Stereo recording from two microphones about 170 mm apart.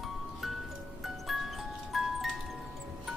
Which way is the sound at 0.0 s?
Centre (ahead or behind).